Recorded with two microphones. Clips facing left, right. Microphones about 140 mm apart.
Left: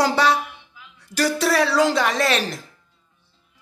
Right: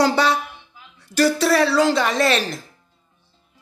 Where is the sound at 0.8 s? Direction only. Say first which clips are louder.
Even; 35° right (ahead or behind).